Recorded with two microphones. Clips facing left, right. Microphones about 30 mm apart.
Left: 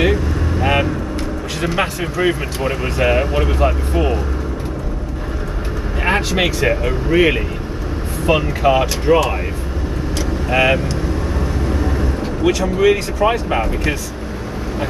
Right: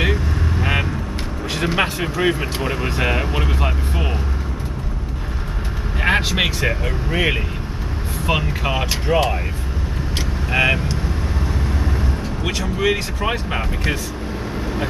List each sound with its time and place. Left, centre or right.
0.0 s vehicle: centre
1.6 s speech: centre
6.0 s speech: centre
10.5 s speech: centre
12.6 s speech: centre